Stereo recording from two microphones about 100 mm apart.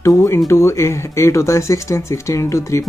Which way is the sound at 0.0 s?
30° left (ahead or behind).